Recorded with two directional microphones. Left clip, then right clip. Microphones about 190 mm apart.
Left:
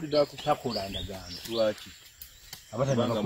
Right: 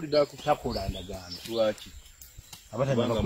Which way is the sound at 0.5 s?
Centre (ahead or behind).